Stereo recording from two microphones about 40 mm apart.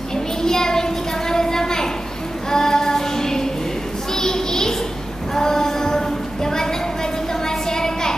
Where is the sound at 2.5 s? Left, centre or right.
Centre.